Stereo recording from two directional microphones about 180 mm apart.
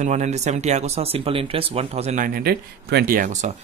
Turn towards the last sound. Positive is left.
turn(degrees=-50)  # may be behind; listen again after turning